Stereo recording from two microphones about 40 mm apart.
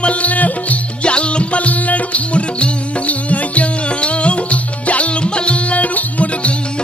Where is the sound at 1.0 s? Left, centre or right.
Left.